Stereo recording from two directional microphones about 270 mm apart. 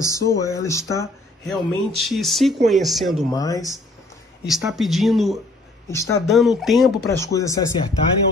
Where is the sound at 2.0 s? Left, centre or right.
Centre.